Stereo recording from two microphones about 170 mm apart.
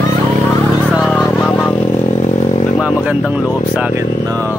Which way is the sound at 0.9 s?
Centre (ahead or behind).